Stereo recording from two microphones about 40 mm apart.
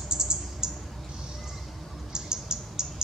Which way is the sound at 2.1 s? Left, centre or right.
Centre.